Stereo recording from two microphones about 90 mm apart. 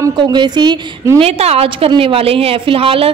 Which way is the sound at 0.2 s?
55° right (ahead or behind).